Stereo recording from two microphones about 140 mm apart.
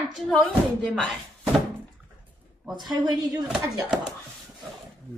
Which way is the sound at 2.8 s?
30° right (ahead or behind).